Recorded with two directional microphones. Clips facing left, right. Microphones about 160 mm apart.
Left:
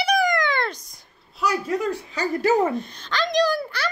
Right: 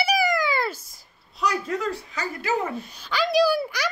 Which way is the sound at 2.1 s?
40° left (ahead or behind).